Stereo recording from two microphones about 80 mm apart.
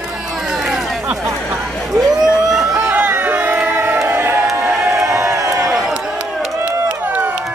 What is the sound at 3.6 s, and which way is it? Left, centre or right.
Crowd, right.